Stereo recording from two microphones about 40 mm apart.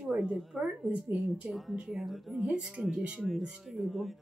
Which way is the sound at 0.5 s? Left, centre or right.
Centre.